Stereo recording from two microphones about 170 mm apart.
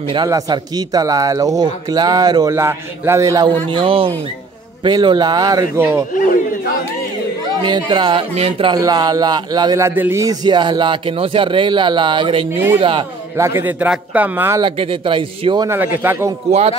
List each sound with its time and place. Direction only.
0.1 s speech: 25° right (ahead or behind)
3.7 s speech: 30° right (ahead or behind); by 6.0 s 15° right (ahead or behind)
7.6 s speech: 25° right (ahead or behind)
12.4 s a man's voice: 15° right (ahead or behind)
12.7 s speech: 30° right (ahead or behind)
13.4 s a man's voice: 15° right (ahead or behind)
14.6 s speech: 30° right (ahead or behind)
15.8 s a man's voice: 10° right (ahead or behind)